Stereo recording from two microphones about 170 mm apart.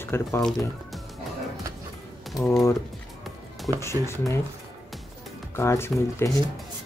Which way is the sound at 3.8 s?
15° left (ahead or behind).